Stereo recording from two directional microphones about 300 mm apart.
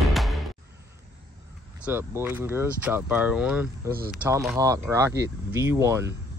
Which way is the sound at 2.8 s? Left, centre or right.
Centre.